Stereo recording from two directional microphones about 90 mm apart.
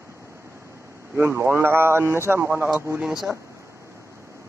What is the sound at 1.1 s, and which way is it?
A man's voice, 25° right (ahead or behind).